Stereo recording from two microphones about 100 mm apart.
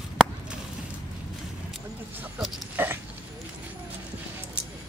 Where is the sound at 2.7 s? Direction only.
20° right (ahead or behind).